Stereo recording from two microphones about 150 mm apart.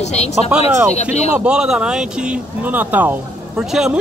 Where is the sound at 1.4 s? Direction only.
5° right (ahead or behind).